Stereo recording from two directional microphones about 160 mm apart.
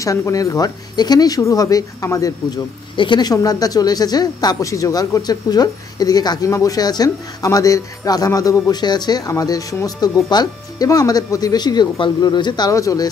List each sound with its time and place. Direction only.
0.0 s speech: 20° left (ahead or behind)